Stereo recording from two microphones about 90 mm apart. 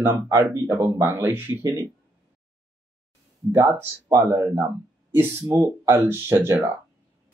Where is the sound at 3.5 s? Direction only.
35° right (ahead or behind).